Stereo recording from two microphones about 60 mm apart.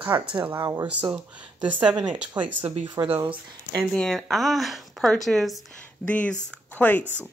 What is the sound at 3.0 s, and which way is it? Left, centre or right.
Speech, right.